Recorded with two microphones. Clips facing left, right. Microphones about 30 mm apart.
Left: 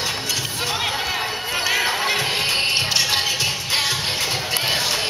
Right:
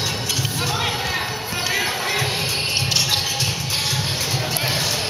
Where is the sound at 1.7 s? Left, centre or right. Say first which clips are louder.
Left 2 dB; centre.